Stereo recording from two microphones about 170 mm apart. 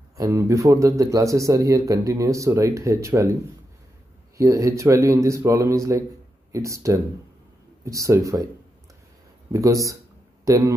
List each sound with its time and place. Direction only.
0.2 s speech: 15° right (ahead or behind)
4.4 s speech: 20° right (ahead or behind)
9.5 s speech: 20° right (ahead or behind)